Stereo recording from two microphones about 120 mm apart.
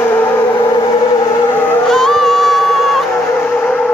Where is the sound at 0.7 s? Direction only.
35° left (ahead or behind).